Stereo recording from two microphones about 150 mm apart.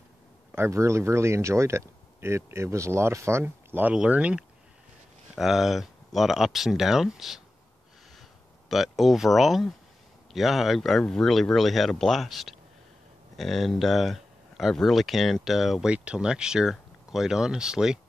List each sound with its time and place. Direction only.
0.5 s speech: 15° right (ahead or behind)
8.6 s speech: centre (ahead or behind)